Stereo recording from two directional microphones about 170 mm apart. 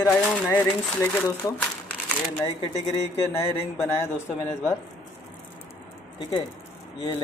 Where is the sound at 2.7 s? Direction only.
40° left (ahead or behind).